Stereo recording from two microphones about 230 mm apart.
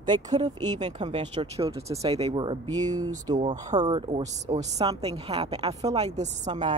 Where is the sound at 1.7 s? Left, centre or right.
Centre.